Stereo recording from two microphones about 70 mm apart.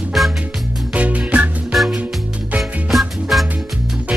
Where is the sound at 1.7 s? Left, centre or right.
Centre.